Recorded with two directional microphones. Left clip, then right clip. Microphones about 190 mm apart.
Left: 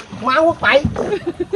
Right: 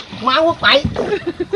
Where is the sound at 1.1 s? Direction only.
25° right (ahead or behind).